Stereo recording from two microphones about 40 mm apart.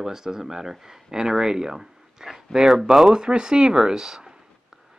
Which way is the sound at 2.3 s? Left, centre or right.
Centre.